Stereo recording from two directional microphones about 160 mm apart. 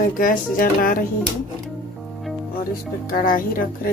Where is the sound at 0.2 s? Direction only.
60° left (ahead or behind).